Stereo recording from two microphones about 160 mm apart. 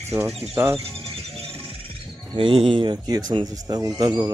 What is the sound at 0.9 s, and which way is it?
Music, 5° left (ahead or behind).